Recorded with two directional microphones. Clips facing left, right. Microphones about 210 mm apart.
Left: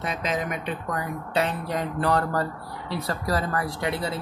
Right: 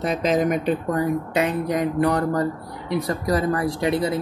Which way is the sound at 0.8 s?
25° right (ahead or behind).